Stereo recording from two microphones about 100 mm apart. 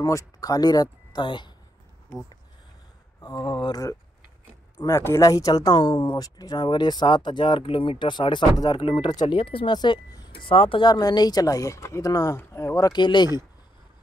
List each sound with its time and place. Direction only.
0.0 s speech: 35° left (ahead or behind); by 1.5 s 50° left (ahead or behind)
3.2 s speech: 40° left (ahead or behind)
9.4 s speech: 65° left (ahead or behind)
9.8 s speech: 45° left (ahead or behind)
10.3 s speech: 65° left (ahead or behind)
10.8 s speech: 45° left (ahead or behind)
13.0 s speech: 50° left (ahead or behind)